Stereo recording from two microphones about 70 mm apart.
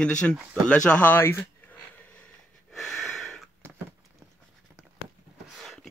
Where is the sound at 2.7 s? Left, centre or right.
Centre.